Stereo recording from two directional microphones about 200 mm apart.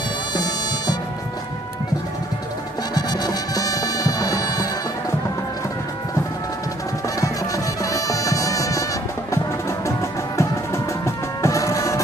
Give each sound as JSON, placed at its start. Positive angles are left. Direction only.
{"t": 2.9, "sound": "music", "side_deg": 20}
{"t": 7.2, "sound": "music", "side_deg": 15}